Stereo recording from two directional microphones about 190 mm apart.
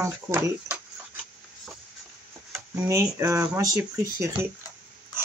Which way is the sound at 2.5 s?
10° right (ahead or behind).